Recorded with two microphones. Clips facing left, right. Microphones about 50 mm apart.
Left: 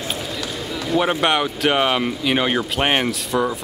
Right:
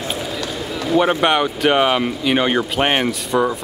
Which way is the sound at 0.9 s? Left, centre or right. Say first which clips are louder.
Right 3 dB; centre.